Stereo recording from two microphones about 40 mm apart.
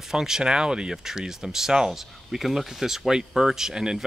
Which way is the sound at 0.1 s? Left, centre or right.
Centre.